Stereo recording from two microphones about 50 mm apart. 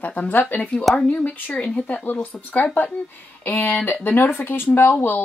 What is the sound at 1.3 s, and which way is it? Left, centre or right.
A woman's voice, left.